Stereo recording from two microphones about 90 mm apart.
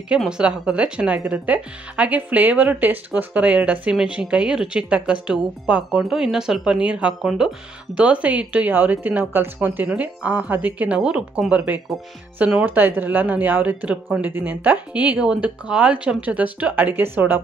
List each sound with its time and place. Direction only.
0.2 s speech: 10° right (ahead or behind)